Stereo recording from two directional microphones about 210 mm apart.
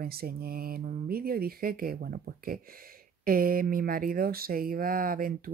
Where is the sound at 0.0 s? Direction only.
45° right (ahead or behind).